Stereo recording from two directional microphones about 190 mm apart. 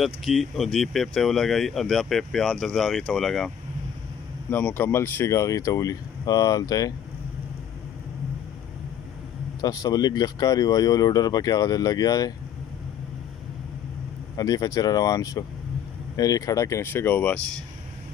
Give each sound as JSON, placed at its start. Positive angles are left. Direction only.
{"t": 0.0, "sound": "speech", "side_deg": 0}
{"t": 9.6, "sound": "speech", "side_deg": 20}
{"t": 14.3, "sound": "speech", "side_deg": 20}